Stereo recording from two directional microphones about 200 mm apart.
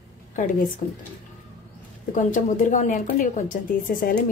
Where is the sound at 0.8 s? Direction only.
35° left (ahead or behind).